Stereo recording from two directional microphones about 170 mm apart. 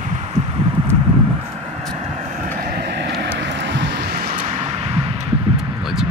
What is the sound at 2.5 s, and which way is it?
Vehicle, 65° right (ahead or behind).